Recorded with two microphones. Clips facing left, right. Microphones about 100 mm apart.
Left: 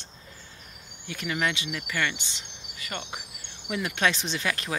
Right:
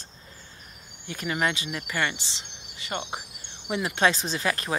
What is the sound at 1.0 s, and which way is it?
Speech, 35° right (ahead or behind).